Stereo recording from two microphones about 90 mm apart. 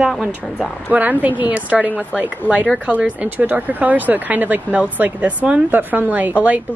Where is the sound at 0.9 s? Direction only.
20° right (ahead or behind).